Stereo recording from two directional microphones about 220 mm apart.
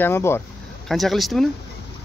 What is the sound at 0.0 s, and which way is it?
Speech, 10° left (ahead or behind).